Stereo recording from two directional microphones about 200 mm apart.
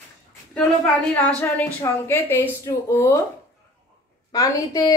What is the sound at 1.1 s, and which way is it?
A woman's voice, 5° left (ahead or behind).